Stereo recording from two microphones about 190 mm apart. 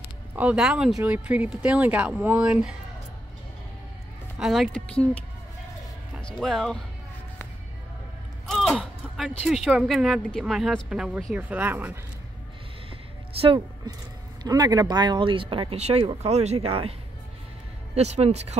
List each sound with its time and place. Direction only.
0.4 s a woman's voice: 5° right (ahead or behind)
4.4 s a woman's voice: centre (ahead or behind)
6.1 s speech: centre (ahead or behind)
8.5 s speech: centre (ahead or behind)
13.4 s a woman's voice: 25° right (ahead or behind)
17.9 s speech: 35° right (ahead or behind)